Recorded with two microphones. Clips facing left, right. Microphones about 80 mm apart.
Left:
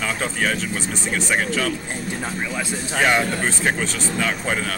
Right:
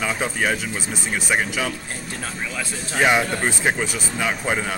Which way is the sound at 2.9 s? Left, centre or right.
Centre.